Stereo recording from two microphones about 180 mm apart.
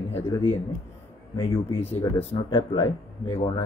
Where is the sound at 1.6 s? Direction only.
35° left (ahead or behind).